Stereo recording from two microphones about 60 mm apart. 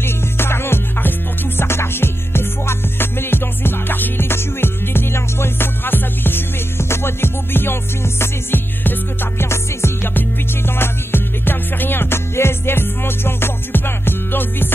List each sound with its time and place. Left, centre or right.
0.0 s music: left